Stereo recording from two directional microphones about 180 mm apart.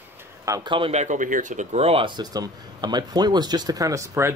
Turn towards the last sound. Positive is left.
turn(degrees=-15)  # may be behind; listen again after turning